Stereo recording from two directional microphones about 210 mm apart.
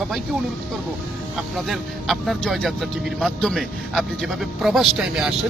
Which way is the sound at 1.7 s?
Centre (ahead or behind).